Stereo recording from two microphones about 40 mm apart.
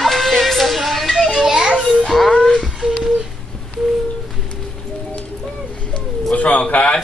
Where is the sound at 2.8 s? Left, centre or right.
Centre.